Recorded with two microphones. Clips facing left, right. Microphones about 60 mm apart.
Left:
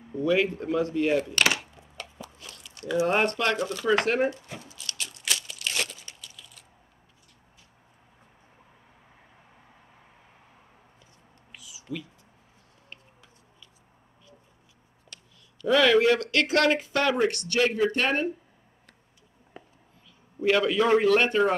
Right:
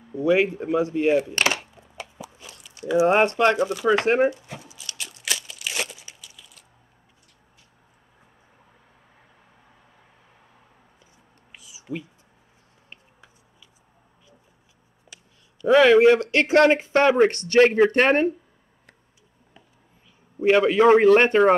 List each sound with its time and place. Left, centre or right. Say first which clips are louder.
0.1 s speech: right 4 dB; centre
2.0 s a sound: right 3 dB; centre
3.6 s speech: right 4 dB; centre
4.0 s speech: right 5 dB; right
4.6 s crumpling: even; centre
11.5 s a sound: even; right
15.1 s a sound: right 1 dB; centre
15.6 s speech: right 6 dB; right
20.3 s speech: right 5 dB; right